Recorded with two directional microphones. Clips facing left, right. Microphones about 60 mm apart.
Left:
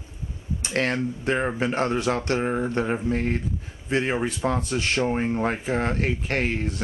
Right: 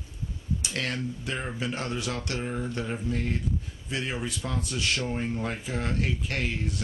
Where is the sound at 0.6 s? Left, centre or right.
Left.